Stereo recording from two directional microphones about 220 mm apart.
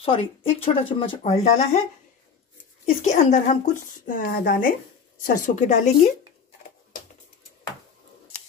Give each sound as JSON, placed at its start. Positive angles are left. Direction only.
{"t": 0.0, "sound": "a woman's voice", "side_deg": 25}